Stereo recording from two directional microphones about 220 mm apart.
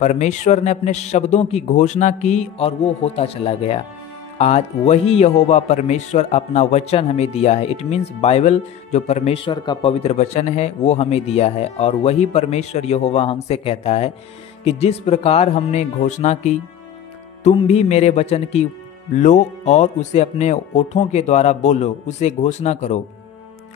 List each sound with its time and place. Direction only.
0.0 s a man's voice: 30° left (ahead or behind)